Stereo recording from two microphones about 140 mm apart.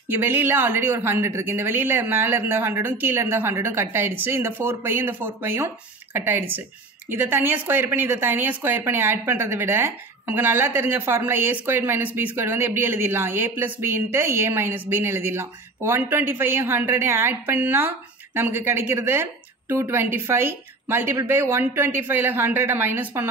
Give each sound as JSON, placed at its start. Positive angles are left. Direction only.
{"t": 0.1, "sound": "speech", "side_deg": -15}